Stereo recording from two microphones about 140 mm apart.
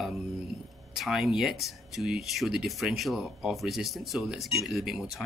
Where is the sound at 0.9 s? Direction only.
Centre (ahead or behind).